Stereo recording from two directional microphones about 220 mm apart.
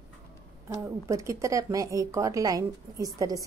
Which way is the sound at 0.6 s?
15° right (ahead or behind).